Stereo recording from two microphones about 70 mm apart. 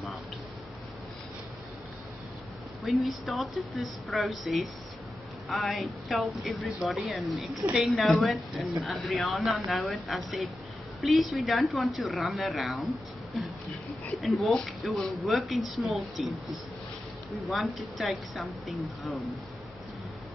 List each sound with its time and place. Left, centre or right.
2.8 s speech: centre